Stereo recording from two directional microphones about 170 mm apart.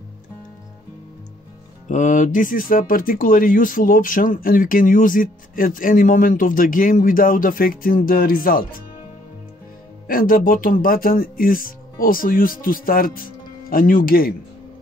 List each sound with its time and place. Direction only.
1.9 s speech: 45° left (ahead or behind)
10.0 s speech: 55° left (ahead or behind)